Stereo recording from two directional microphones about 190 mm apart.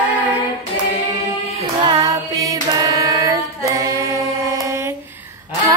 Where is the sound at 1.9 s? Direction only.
20° right (ahead or behind).